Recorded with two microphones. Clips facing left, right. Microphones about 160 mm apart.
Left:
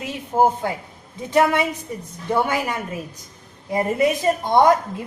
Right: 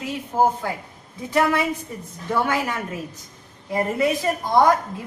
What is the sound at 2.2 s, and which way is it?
Speech, 15° left (ahead or behind).